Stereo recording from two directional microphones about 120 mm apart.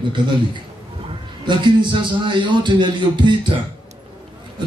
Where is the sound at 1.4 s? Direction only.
40° right (ahead or behind).